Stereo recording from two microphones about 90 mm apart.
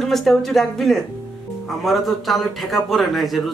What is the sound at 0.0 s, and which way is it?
A man's voice, 5° left (ahead or behind).